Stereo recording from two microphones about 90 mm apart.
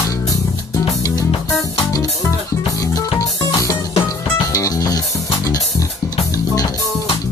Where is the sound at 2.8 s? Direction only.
40° left (ahead or behind).